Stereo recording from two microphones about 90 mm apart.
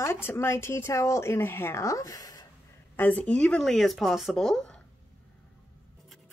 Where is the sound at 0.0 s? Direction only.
25° left (ahead or behind).